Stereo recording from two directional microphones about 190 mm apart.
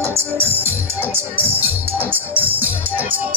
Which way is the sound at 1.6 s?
10° right (ahead or behind).